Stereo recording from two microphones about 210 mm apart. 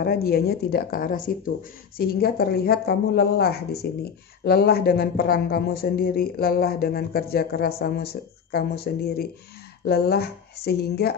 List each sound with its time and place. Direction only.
0.0 s a woman's voice: 45° left (ahead or behind)